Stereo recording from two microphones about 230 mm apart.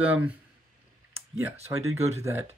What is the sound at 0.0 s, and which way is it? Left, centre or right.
Speech, centre.